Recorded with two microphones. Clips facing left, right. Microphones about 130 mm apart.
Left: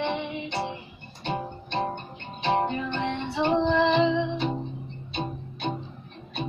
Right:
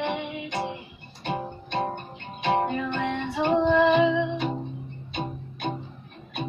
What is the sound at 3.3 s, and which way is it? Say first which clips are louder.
Female singing: right 2 dB; 5° right (ahead or behind).